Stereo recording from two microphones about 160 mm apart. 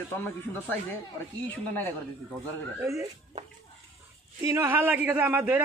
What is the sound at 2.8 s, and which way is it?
Speech, 20° right (ahead or behind).